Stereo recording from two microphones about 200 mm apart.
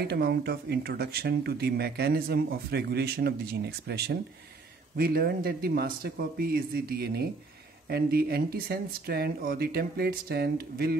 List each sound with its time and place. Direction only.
0.0 s speech: 55° right (ahead or behind)